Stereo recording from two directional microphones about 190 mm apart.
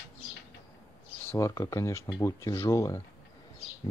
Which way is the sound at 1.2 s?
15° left (ahead or behind).